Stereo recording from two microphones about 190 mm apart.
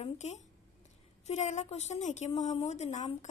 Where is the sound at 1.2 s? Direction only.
35° left (ahead or behind).